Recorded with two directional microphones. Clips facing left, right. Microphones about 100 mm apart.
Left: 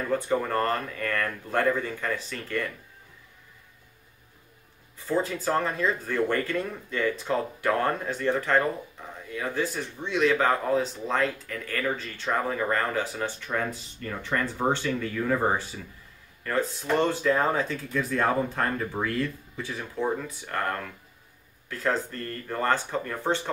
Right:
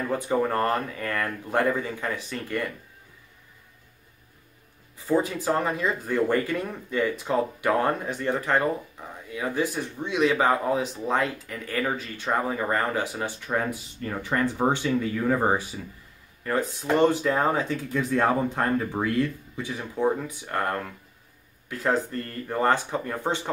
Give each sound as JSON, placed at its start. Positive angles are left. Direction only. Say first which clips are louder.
{"t": 0.1, "sound": "speech", "louder": "right 1 dB", "side_deg": -15}
{"t": 5.0, "sound": "speech", "louder": "right 3 dB", "side_deg": -15}
{"t": 21.6, "sound": "speech", "louder": "right 2 dB", "side_deg": -15}